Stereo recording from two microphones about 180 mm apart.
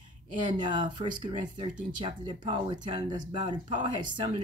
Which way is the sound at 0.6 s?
25° right (ahead or behind).